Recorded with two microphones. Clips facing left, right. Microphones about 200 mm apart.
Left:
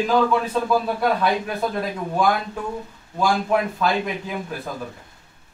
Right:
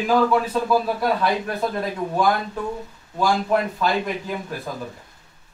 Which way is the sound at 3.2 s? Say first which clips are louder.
Even; centre (ahead or behind).